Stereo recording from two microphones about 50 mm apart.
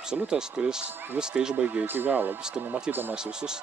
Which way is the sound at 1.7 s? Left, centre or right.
Right.